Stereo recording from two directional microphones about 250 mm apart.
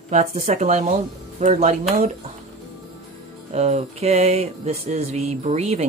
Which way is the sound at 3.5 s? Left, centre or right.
Right.